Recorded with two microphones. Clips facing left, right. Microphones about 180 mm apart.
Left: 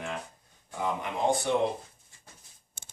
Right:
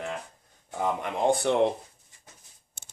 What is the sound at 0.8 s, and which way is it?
Speech, 50° right (ahead or behind).